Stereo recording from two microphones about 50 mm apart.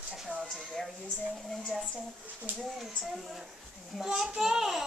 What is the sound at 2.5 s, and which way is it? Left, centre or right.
Speech, right.